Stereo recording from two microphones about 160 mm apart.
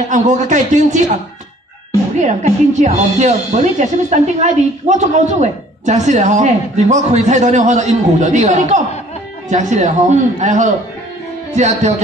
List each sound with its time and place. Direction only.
0.1 s speech: 50° right (ahead or behind)
2.2 s speech: 45° right (ahead or behind)